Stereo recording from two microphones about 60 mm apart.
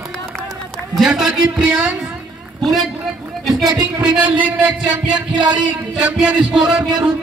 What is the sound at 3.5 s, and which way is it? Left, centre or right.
Speech, right.